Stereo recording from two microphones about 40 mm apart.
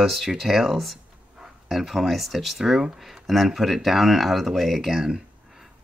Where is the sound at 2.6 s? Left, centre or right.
Centre.